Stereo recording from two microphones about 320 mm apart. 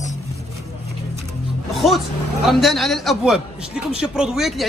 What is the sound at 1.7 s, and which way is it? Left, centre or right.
A man's voice, centre.